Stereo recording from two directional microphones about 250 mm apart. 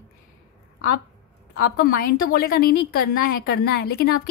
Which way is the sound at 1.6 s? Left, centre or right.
Left.